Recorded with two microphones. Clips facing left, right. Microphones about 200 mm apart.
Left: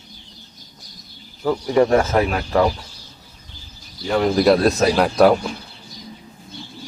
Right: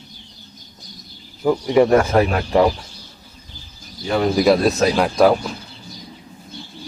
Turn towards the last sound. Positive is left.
turn(degrees=0)  # may be behind; listen again after turning